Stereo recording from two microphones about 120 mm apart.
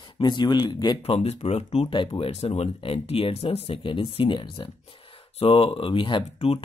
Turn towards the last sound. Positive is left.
turn(degrees=50)  # may be behind; listen again after turning